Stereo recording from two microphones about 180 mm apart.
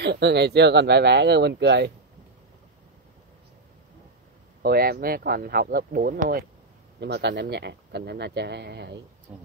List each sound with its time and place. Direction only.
0.0 s a man's voice: 70° right (ahead or behind)
4.6 s speech: 60° right (ahead or behind)
7.0 s a man's voice: 70° right (ahead or behind)